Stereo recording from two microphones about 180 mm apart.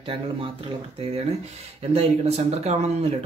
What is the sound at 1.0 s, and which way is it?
Speech, 35° right (ahead or behind).